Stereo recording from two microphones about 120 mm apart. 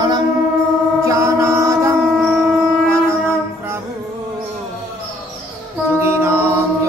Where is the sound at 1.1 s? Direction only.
25° right (ahead or behind).